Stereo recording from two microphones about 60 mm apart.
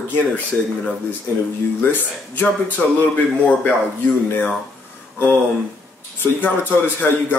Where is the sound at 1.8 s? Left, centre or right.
Left.